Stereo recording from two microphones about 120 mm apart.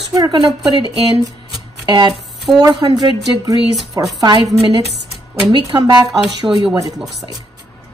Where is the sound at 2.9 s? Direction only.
30° right (ahead or behind).